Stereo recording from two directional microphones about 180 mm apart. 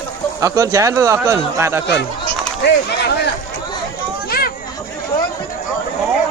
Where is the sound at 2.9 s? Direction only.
65° left (ahead or behind).